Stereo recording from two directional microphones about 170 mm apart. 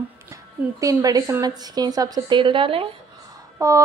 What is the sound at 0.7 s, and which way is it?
A woman's voice, 20° right (ahead or behind).